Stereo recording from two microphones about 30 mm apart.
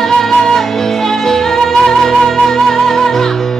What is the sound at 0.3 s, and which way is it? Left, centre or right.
Music, centre.